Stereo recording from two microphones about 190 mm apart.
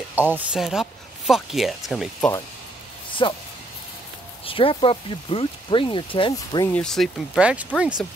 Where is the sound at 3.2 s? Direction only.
25° left (ahead or behind).